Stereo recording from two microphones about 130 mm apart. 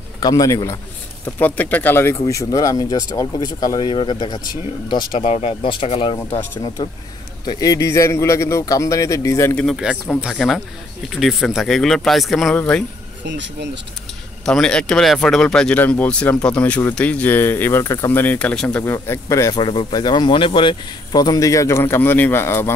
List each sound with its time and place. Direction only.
0.2 s speech: 30° left (ahead or behind)
1.2 s speech: 10° left (ahead or behind); by 5.3 s 40° left (ahead or behind)
5.3 s speech: 55° left (ahead or behind)
5.6 s speech: 40° left (ahead or behind)
6.8 s speech: 30° left (ahead or behind)
10.0 s speech: centre (ahead or behind)
14.4 s speech: 5° left (ahead or behind); by 19.5 s 25° left (ahead or behind)
19.5 s speech: 35° left (ahead or behind); by 22.7 s 20° left (ahead or behind)